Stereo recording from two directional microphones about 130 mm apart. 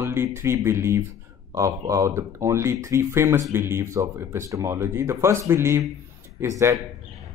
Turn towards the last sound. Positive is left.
turn(degrees=-25)  # may be behind; listen again after turning